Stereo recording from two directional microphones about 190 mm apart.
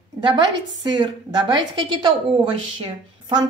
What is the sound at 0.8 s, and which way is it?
A woman's voice, 25° right (ahead or behind).